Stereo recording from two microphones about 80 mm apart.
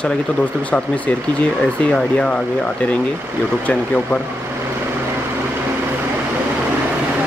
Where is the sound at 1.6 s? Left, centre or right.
Centre.